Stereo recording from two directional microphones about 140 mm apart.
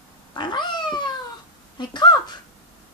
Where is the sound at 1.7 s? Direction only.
30° left (ahead or behind).